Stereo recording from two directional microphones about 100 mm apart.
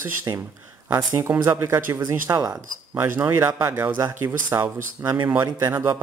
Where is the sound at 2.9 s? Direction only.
20° right (ahead or behind).